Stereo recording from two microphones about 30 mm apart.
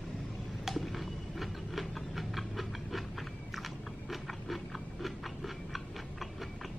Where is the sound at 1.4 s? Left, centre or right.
Centre.